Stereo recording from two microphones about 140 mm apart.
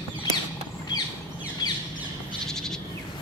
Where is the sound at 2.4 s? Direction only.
5° left (ahead or behind).